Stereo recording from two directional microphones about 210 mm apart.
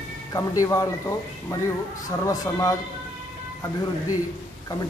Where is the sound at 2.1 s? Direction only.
15° left (ahead or behind).